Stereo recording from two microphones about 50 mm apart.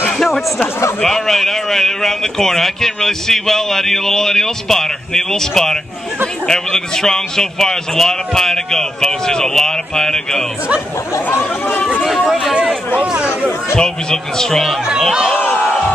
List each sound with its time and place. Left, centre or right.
0.2 s a man's voice: centre
11.2 s speech: left
12.0 s speech: centre
13.7 s a man's voice: centre